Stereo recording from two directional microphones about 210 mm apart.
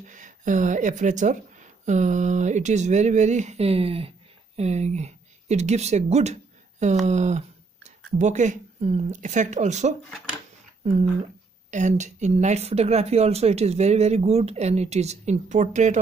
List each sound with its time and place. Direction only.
0.0 s speech: 35° right (ahead or behind)